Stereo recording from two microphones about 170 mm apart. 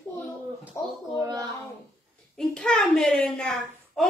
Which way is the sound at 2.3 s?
5° left (ahead or behind).